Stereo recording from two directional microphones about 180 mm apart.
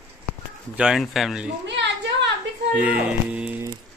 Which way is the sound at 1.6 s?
75° right (ahead or behind).